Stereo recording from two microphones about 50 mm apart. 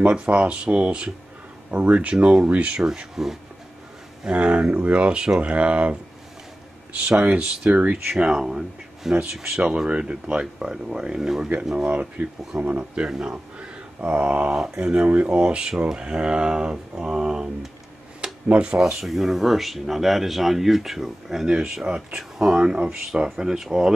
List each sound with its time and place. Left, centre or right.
0.0 s speech: right
2.8 s speech: centre
4.3 s speech: right
8.1 s speech: centre
11.7 s speech: right; by 23.9 s centre